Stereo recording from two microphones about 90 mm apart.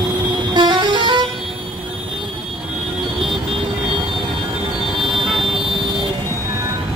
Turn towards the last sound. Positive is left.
turn(degrees=-5)  # may be behind; listen again after turning